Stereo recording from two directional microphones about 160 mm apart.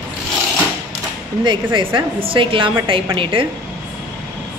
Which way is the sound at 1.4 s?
30° right (ahead or behind).